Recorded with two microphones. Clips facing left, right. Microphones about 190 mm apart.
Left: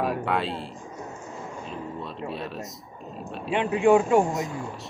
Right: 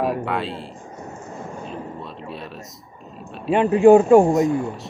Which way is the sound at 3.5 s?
40° right (ahead or behind).